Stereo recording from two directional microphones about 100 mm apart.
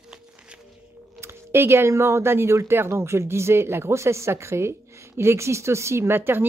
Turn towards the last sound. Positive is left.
turn(degrees=-20)  # may be behind; listen again after turning